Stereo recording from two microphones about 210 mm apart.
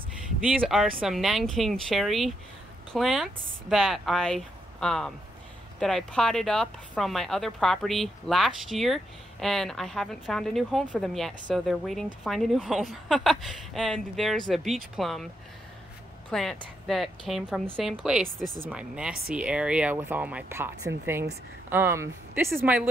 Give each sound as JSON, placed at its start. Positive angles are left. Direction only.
{"t": 0.5, "sound": "speech", "side_deg": -5}
{"t": 16.3, "sound": "a woman's voice", "side_deg": 0}